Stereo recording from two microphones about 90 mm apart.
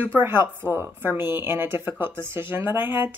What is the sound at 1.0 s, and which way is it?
Speech, 25° right (ahead or behind).